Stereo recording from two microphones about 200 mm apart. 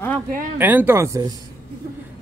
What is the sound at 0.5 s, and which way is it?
Speech, 10° right (ahead or behind).